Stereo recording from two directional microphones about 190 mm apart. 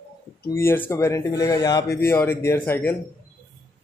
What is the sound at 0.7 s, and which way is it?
Speech, 10° left (ahead or behind).